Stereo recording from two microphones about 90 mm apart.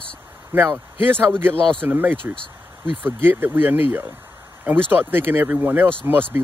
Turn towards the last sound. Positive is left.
turn(degrees=-25)  # may be behind; listen again after turning